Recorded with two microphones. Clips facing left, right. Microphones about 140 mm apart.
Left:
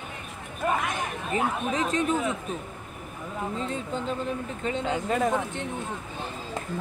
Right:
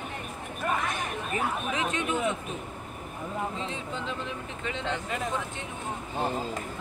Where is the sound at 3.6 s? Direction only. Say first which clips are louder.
Left 4 dB; 45° left (ahead or behind).